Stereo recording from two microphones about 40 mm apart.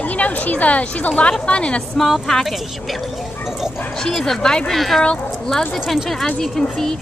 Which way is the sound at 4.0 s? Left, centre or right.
Centre.